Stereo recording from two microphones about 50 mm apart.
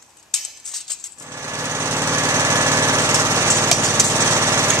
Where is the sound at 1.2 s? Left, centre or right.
Right.